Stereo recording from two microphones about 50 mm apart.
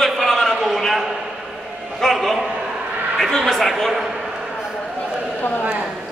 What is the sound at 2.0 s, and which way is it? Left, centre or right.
A man's voice, centre.